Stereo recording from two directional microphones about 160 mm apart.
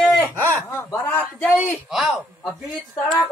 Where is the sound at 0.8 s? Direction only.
15° left (ahead or behind).